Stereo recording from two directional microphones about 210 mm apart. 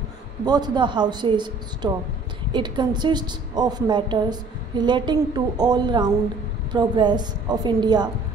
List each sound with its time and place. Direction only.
0.5 s a woman's voice: 20° right (ahead or behind)